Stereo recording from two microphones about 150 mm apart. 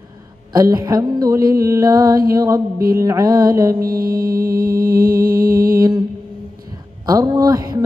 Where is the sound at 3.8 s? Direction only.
75° right (ahead or behind).